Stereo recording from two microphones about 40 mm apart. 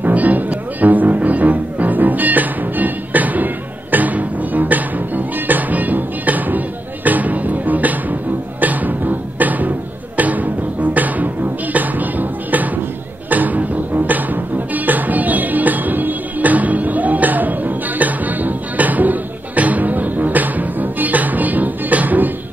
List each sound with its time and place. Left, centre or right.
0.0 s music: right